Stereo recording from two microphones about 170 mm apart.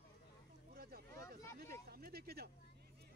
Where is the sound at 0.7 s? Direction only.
60° right (ahead or behind).